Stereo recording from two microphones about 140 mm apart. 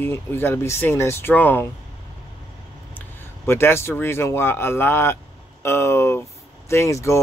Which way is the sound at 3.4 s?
15° left (ahead or behind).